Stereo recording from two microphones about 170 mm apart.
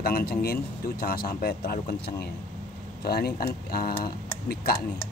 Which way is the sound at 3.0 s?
65° left (ahead or behind).